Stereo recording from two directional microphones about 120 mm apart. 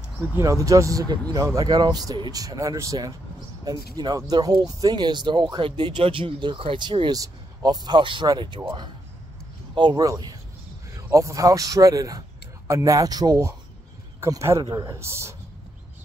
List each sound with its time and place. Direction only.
0.4 s speech: 25° right (ahead or behind)
9.8 s speech: 35° right (ahead or behind)